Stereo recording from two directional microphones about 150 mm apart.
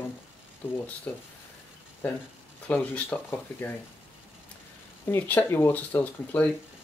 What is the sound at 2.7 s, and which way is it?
Speech, 10° left (ahead or behind).